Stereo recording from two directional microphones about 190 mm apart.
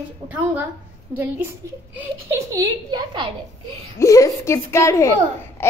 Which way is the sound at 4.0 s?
15° left (ahead or behind).